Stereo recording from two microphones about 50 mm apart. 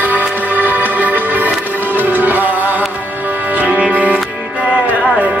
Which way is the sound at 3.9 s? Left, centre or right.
Right.